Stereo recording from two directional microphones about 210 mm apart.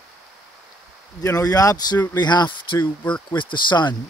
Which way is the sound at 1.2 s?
15° left (ahead or behind).